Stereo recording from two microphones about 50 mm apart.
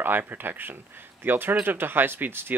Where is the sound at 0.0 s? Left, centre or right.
Right.